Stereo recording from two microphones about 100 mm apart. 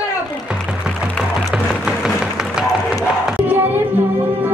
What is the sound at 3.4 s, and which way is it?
Music, 20° right (ahead or behind).